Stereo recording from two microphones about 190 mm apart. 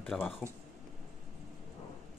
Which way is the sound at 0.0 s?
5° left (ahead or behind).